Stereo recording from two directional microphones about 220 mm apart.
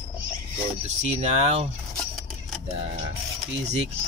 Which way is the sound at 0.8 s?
30° right (ahead or behind).